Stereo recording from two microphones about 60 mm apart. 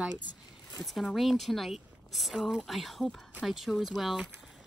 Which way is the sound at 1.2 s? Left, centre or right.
Centre.